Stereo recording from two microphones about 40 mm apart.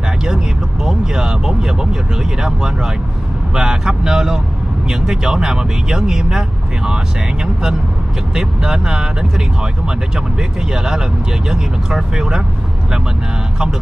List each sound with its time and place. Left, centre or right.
0.8 s speech: centre
8.4 s speech: centre
10.7 s speech: centre